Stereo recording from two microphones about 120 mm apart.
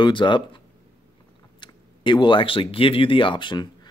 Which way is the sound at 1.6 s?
40° left (ahead or behind).